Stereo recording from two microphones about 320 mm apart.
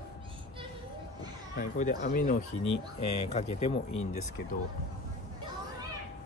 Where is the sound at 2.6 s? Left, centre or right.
Left.